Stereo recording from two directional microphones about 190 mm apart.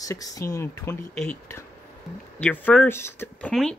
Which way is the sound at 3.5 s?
Centre (ahead or behind).